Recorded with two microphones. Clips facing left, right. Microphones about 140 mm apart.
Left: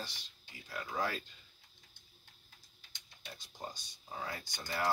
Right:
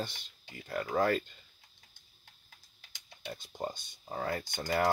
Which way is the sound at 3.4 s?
55° right (ahead or behind).